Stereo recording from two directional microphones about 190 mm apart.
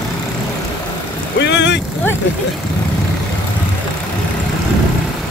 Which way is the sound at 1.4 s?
65° left (ahead or behind).